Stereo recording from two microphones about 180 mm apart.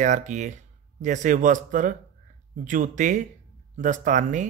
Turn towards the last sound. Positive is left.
turn(degrees=-45)  # may be behind; listen again after turning